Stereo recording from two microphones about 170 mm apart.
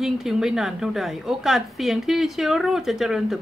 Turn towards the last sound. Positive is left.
turn(degrees=-5)  # may be behind; listen again after turning